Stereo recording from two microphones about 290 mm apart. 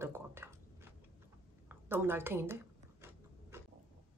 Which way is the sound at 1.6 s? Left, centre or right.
Centre.